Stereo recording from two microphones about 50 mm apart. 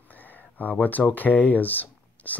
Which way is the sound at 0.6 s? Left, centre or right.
Left.